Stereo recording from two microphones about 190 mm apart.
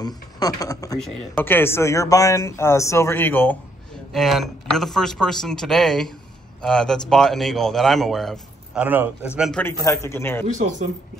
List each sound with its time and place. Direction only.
0.0 s speech: 20° left (ahead or behind)
0.9 s speech: 5° left (ahead or behind)
8.8 s a man's voice: 10° right (ahead or behind)
9.4 s speech: 5° left (ahead or behind)
10.4 s speech: 40° right (ahead or behind)